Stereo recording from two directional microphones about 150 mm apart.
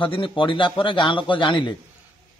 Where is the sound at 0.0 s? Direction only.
35° left (ahead or behind).